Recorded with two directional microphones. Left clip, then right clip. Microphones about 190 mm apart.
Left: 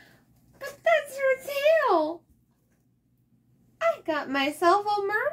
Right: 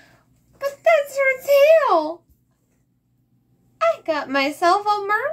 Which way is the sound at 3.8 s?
20° right (ahead or behind).